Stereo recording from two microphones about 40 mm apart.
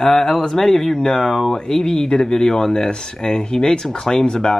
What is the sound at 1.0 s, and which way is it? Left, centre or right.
Speech, centre.